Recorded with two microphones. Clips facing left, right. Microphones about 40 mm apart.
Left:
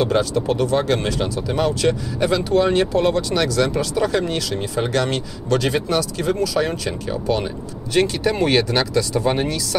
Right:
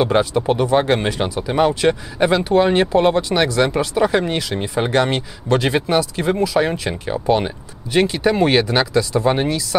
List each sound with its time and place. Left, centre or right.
0.0 s speech: right
7.9 s speech: centre